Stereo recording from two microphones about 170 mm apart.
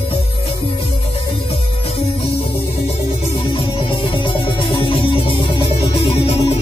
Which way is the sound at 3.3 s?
30° left (ahead or behind).